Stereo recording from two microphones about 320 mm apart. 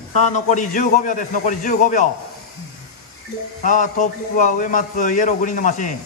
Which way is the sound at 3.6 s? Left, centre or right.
Left.